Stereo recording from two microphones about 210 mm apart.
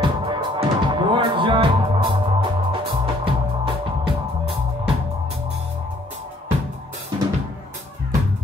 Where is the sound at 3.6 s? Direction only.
25° right (ahead or behind).